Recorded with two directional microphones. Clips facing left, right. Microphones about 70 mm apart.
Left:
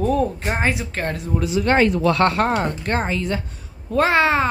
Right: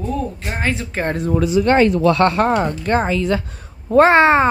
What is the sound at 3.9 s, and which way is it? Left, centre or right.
Speech, right.